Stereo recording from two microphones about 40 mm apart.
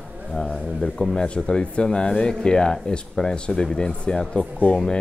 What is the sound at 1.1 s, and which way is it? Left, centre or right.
Speech, left.